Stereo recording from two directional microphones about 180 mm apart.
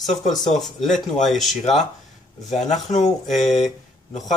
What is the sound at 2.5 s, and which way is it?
Speech, 40° left (ahead or behind).